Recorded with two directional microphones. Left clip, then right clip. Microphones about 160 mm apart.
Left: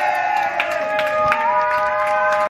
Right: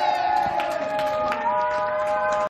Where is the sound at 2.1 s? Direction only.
30° left (ahead or behind).